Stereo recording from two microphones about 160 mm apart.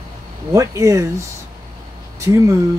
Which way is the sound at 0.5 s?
20° right (ahead or behind).